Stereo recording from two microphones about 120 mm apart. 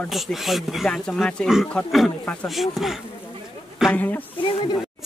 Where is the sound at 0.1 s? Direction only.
Centre (ahead or behind).